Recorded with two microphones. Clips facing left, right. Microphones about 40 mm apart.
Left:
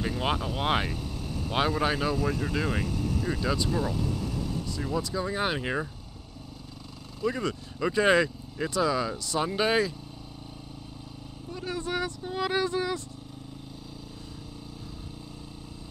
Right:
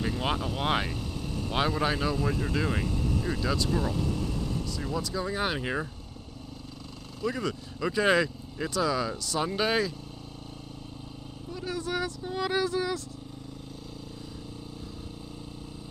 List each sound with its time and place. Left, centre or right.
0.0 s speech: centre
7.2 s speech: centre
11.5 s vehicle: centre
11.9 s speech: centre